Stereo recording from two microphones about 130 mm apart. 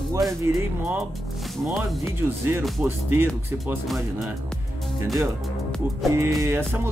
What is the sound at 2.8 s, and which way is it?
Music, 15° right (ahead or behind).